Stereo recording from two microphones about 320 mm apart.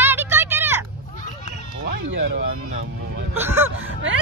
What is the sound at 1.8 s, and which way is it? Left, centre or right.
Speech, right.